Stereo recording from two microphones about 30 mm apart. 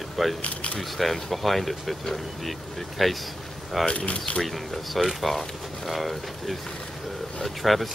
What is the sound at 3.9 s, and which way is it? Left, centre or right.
Speech, left.